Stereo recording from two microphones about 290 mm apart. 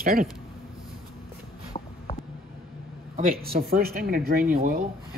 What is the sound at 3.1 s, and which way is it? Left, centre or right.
Speech, right.